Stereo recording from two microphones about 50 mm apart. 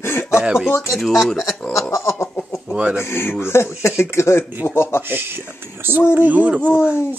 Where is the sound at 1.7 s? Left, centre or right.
Left.